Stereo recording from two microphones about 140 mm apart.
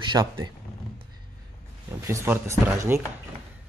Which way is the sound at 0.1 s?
35° right (ahead or behind).